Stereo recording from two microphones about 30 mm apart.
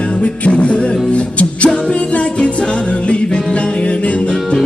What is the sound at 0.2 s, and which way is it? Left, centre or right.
Music, left.